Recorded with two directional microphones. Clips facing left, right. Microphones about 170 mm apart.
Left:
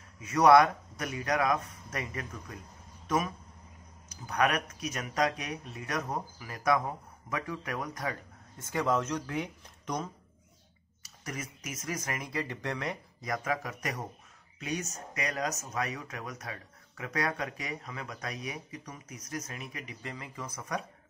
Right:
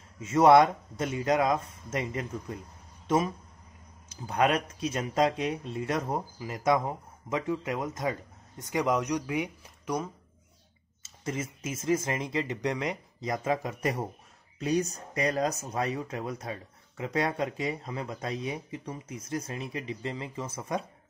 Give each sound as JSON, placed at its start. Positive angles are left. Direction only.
{"t": 0.2, "sound": "speech", "side_deg": -25}
{"t": 11.0, "sound": "speech", "side_deg": -25}